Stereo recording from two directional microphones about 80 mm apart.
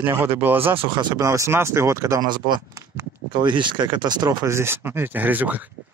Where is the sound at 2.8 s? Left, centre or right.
Right.